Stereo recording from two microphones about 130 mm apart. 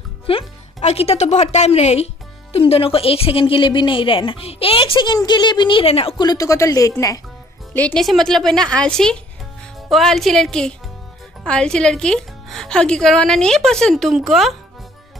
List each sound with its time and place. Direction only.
0.3 s a woman's voice: 50° left (ahead or behind)
6.1 s speech: 30° left (ahead or behind)
7.7 s a woman's voice: 10° left (ahead or behind)